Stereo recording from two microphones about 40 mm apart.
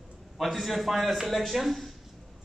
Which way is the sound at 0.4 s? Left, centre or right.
Centre.